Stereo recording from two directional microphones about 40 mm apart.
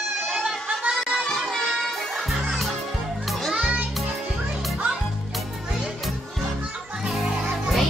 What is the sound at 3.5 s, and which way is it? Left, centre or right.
Music, right.